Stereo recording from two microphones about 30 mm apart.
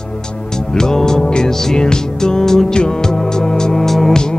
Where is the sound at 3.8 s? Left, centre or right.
Centre.